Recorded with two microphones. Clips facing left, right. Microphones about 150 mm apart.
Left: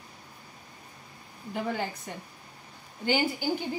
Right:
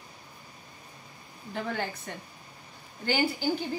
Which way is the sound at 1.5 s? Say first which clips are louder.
Left 1 dB; 15° left (ahead or behind).